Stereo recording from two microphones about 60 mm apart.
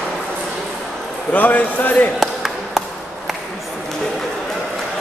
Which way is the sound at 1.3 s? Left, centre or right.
Left.